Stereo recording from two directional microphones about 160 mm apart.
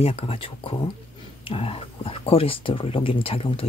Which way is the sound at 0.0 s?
40° left (ahead or behind).